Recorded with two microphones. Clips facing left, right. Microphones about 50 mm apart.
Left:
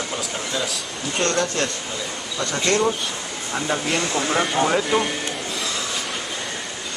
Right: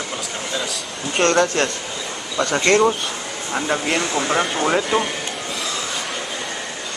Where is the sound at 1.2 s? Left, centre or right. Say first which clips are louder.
Right 5 dB; right.